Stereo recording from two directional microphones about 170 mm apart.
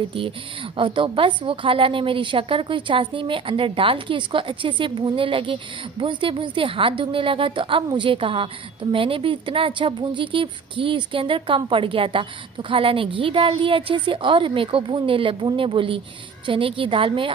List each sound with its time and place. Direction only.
0.7 s a woman's voice: 30° right (ahead or behind)